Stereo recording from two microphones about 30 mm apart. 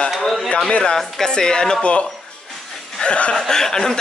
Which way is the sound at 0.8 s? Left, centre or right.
Left.